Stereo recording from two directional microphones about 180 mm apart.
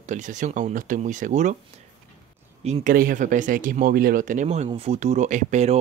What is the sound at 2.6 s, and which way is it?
Speech, 35° right (ahead or behind).